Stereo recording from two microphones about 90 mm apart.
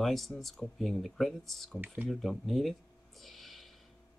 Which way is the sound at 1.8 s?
20° right (ahead or behind).